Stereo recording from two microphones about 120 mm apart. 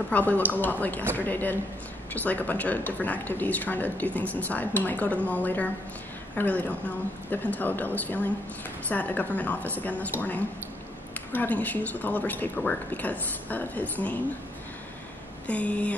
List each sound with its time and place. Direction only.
0.1 s speech: 15° left (ahead or behind)
11.3 s speech: 15° left (ahead or behind)
15.4 s speech: 10° left (ahead or behind)